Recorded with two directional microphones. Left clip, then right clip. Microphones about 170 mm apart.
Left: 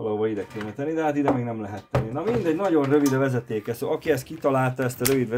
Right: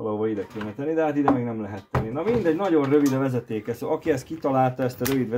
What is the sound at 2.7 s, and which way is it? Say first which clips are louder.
Speech: left 1 dB; 40° left (ahead or behind).